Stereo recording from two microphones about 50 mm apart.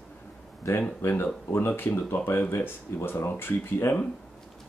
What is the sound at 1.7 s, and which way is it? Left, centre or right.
Speech, left.